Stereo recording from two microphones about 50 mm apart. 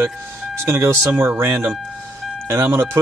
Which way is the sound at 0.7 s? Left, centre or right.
Right.